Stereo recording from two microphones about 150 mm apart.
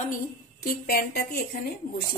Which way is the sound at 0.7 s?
85° left.